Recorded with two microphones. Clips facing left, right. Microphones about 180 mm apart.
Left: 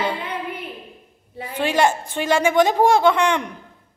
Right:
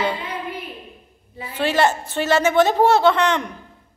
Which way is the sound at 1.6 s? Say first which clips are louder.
Even; 10° left (ahead or behind).